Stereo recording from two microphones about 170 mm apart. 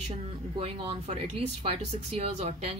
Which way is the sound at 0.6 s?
35° right (ahead or behind).